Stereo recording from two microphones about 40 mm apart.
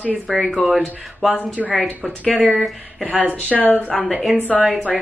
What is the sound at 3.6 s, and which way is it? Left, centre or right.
Speech, left.